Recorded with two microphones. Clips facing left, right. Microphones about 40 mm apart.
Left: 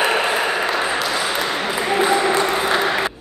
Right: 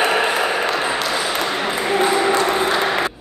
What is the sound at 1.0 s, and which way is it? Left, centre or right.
Ping, centre.